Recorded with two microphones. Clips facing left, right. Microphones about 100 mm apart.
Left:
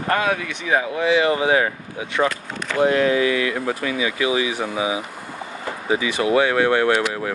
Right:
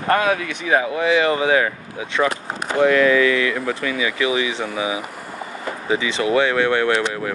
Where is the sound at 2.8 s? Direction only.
65° right (ahead or behind).